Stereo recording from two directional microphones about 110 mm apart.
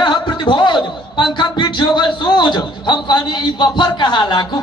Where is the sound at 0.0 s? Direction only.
40° left (ahead or behind).